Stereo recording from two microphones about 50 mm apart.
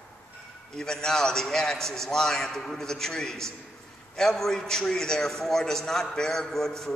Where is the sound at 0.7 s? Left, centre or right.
Centre.